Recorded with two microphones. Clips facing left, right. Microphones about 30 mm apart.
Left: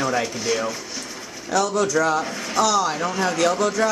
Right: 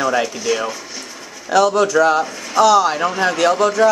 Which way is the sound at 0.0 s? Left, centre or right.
Right.